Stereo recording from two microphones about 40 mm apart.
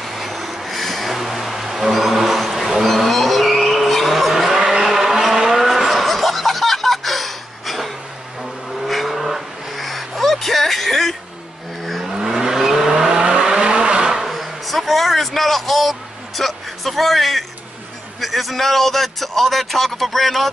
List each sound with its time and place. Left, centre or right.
0.0 s a sound: centre
2.9 s vehicle: centre
5.3 s car: centre
8.4 s vehicle: centre
12.1 s vehicle: centre
14.2 s vehicle: centre
18.2 s a sound: centre